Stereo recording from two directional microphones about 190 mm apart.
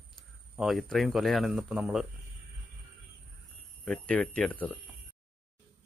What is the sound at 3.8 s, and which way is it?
Speech, 5° left (ahead or behind).